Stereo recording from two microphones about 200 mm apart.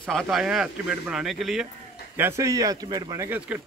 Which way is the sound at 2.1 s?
10° right (ahead or behind).